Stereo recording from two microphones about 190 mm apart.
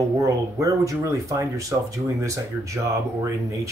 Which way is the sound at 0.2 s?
15° right (ahead or behind).